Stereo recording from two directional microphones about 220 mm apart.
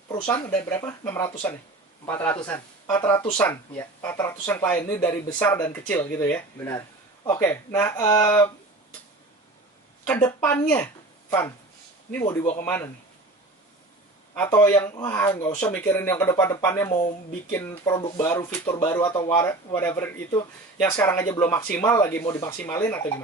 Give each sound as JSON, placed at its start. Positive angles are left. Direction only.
{"t": 0.1, "sound": "speech", "side_deg": 20}
{"t": 0.5, "sound": "speech", "side_deg": 5}
{"t": 10.0, "sound": "speech", "side_deg": 10}
{"t": 10.7, "sound": "a sound", "side_deg": 10}
{"t": 12.1, "sound": "speech", "side_deg": 10}
{"t": 14.3, "sound": "speech", "side_deg": 10}